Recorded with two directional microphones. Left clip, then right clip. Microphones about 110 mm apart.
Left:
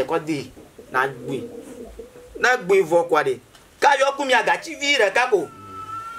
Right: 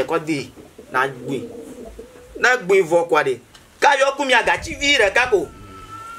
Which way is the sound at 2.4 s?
5° left (ahead or behind).